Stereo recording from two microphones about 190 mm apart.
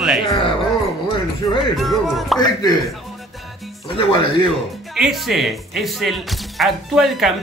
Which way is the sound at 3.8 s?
30° left (ahead or behind).